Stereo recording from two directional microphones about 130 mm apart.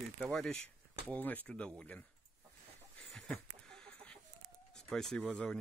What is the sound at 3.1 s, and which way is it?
Chicken, 5° left (ahead or behind).